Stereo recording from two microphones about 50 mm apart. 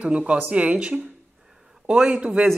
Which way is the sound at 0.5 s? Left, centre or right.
Right.